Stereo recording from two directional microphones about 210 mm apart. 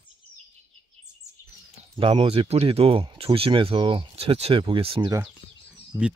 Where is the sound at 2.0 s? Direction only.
25° right (ahead or behind).